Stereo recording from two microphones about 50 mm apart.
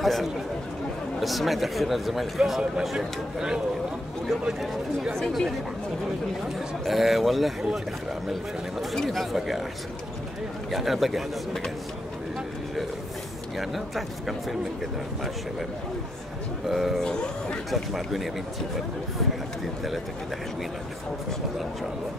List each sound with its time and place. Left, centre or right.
0.0 s a man's voice: centre
6.8 s speech: centre
8.9 s speech: centre
10.7 s speech: centre
13.6 s speech: centre
16.6 s speech: centre
17.0 s speech: centre
17.6 s speech: centre